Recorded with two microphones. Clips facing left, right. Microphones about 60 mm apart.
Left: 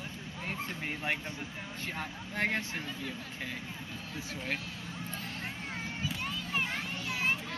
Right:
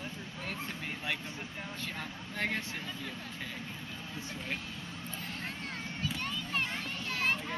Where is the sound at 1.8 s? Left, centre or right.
Left.